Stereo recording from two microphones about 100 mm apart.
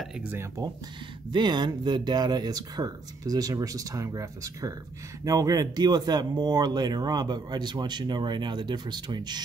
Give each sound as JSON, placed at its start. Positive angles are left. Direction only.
{"t": 0.2, "sound": "speech", "side_deg": -20}
{"t": 1.3, "sound": "speech", "side_deg": -45}